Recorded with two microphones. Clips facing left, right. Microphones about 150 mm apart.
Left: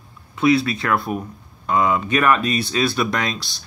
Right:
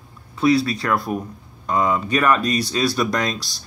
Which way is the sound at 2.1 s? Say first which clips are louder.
Even; 35° right (ahead or behind).